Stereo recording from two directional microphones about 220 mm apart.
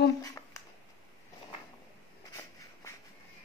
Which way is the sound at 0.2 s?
15° left (ahead or behind).